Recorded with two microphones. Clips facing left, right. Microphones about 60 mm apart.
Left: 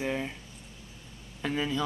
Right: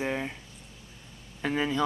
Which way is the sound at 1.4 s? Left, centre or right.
Right.